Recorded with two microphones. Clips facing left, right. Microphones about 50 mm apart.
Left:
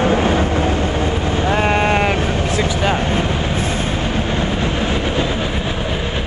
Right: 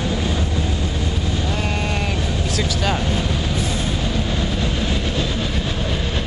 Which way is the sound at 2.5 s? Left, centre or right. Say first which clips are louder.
Left 3 dB; left.